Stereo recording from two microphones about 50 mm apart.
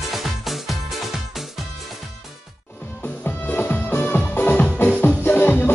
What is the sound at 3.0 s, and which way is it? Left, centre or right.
Music, left.